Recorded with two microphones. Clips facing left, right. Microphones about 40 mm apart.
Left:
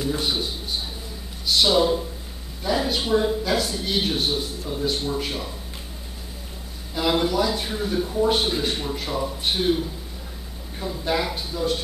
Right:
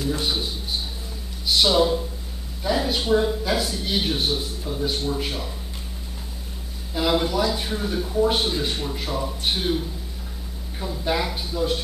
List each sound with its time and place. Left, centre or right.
0.2 s a man's voice: centre
1.5 s a man's voice: centre
6.9 s a man's voice: centre